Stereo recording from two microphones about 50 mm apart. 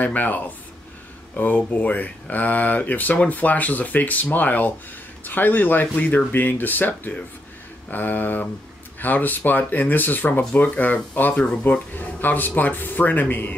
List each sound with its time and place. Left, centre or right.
0.0 s speech: left